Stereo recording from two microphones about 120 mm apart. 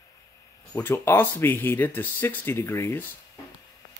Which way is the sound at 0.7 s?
20° left (ahead or behind).